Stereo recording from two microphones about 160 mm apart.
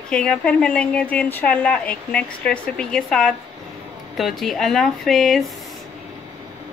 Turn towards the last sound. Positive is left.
turn(degrees=0)  # may be behind; listen again after turning